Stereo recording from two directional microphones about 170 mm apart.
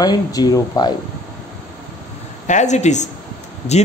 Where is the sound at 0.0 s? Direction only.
25° left (ahead or behind).